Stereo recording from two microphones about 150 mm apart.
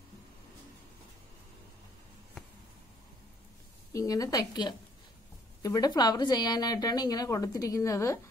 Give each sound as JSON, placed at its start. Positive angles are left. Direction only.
{"t": 3.9, "sound": "a woman's voice", "side_deg": 20}